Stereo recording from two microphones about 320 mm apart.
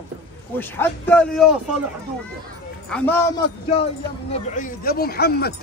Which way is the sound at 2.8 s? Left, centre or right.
Centre.